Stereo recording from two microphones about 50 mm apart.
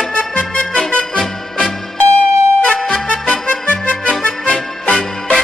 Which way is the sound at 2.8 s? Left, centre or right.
Centre.